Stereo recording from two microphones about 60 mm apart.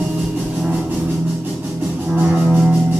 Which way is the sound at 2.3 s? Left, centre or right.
Centre.